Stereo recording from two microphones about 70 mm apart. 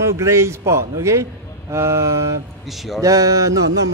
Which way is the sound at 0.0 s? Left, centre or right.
Right.